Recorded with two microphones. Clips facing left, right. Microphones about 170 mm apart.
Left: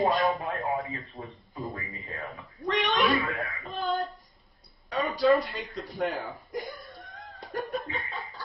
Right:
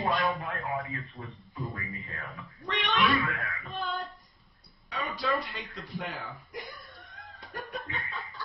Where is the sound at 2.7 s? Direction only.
40° left (ahead or behind).